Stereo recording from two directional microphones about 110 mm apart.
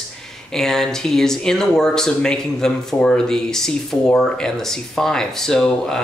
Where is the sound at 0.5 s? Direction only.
5° left (ahead or behind).